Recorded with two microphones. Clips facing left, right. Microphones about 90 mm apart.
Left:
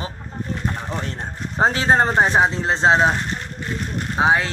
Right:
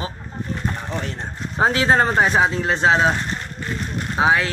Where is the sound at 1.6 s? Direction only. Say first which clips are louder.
Even; 30° left (ahead or behind).